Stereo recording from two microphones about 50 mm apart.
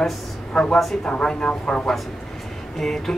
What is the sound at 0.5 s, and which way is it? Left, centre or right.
Speech, centre.